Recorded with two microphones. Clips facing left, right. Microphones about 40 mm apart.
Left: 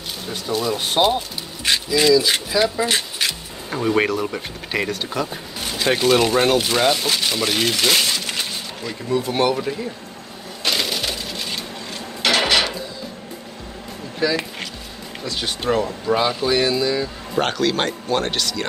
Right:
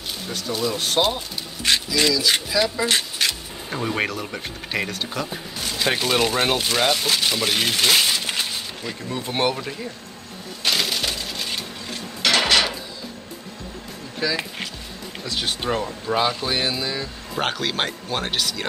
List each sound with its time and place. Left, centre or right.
0.5 s speech: centre
0.7 s speech: centre
9.2 s speech: centre
9.6 s speech: centre
10.6 s crushing: centre
12.2 s a sound: centre
14.2 s speech: centre